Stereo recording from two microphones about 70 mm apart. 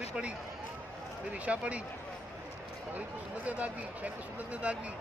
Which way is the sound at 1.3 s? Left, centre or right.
Centre.